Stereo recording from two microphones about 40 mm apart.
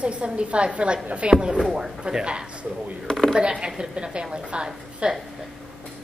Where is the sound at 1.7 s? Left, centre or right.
Centre.